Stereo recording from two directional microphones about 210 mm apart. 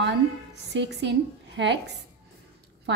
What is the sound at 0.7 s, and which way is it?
A woman's voice, 55° right (ahead or behind).